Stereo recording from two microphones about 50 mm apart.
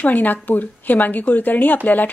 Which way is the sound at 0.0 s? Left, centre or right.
Left.